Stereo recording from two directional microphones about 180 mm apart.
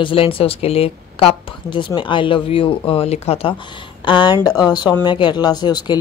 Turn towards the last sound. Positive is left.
turn(degrees=25)  # may be behind; listen again after turning